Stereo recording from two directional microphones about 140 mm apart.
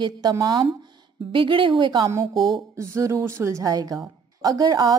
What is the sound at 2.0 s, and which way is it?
Speech, 20° right (ahead or behind).